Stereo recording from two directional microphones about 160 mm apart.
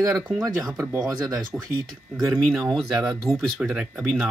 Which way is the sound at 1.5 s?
10° right (ahead or behind).